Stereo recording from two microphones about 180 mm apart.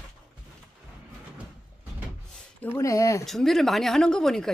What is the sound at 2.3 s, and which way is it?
Speech, 10° left (ahead or behind).